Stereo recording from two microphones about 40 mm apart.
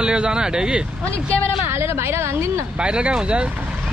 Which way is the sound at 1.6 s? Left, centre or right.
Right.